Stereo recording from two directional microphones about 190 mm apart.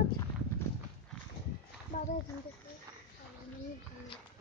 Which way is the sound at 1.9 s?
40° left (ahead or behind).